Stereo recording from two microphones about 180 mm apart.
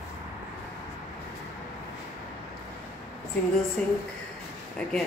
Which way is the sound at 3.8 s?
5° left (ahead or behind).